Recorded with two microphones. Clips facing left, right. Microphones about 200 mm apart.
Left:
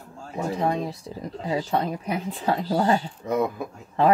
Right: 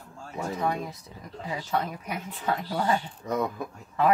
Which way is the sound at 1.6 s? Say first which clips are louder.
Left 4 dB; 30° left (ahead or behind).